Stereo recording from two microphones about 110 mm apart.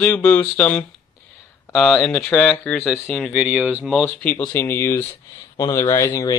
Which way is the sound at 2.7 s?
20° left (ahead or behind).